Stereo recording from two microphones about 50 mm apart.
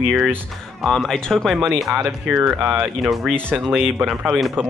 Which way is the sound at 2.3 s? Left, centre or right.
Right.